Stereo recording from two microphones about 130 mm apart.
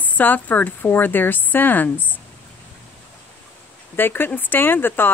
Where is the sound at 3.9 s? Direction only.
15° left (ahead or behind).